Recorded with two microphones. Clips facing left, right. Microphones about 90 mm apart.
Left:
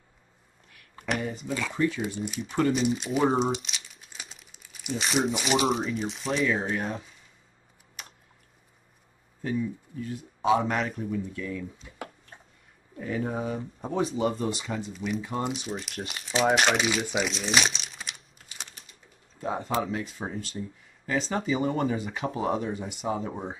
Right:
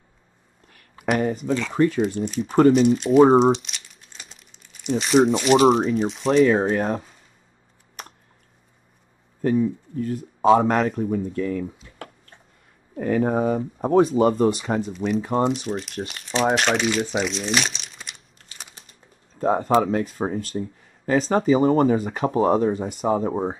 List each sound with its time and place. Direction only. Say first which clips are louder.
1.1 s speech: right 8 dB; 50° right (ahead or behind)
2.1 s speech: right 8 dB; 5° left (ahead or behind)
2.4 s speech: right 10 dB; 40° right (ahead or behind)
2.9 s speech: right 10 dB; centre (ahead or behind)
3.2 s speech: right 11 dB; 40° right (ahead or behind)
3.4 s crumpling: right 10 dB; centre (ahead or behind)
6.2 s speech: right 10 dB; 45° right (ahead or behind)
8.0 s a sound: right 6 dB; 45° right (ahead or behind)
9.4 s speech: right 9 dB; 45° right (ahead or behind)
11.8 s a sound: even; 10° left (ahead or behind)
12.9 s speech: right 9 dB; 60° right (ahead or behind); by 15.5 s 40° right (ahead or behind)
15.5 s speech: right 7 dB; centre (ahead or behind)
17.2 s crumpling: right 3 dB; centre (ahead or behind)
18.8 s speech: right 2 dB; 45° right (ahead or behind)